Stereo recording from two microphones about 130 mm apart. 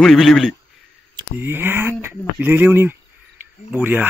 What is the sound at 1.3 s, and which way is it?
A man's voice, 15° right (ahead or behind).